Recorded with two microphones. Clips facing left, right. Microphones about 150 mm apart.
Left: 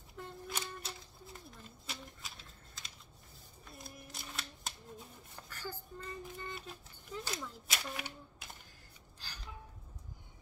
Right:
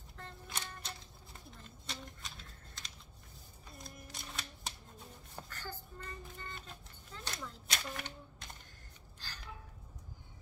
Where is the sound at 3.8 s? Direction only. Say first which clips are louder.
Even; centre (ahead or behind).